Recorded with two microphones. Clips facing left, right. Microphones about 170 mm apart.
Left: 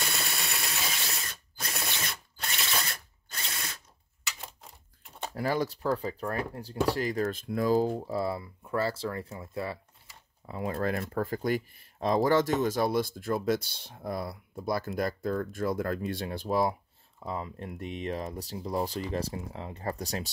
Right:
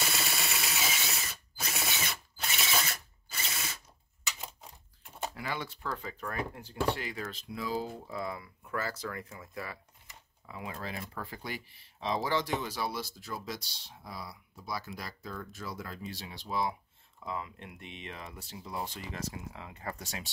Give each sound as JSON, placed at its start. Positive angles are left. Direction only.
{"t": 0.0, "sound": "drill", "side_deg": 0}
{"t": 4.4, "sound": "a sound", "side_deg": 0}
{"t": 5.3, "sound": "speech", "side_deg": 40}
{"t": 10.4, "sound": "speech", "side_deg": 40}